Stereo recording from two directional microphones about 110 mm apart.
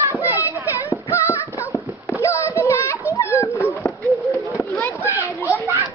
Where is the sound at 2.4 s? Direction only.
25° left (ahead or behind).